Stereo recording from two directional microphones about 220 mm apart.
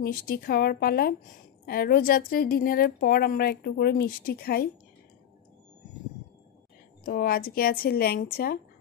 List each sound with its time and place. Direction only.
0.0 s a woman's voice: 45° left (ahead or behind)
7.1 s a woman's voice: 45° left (ahead or behind)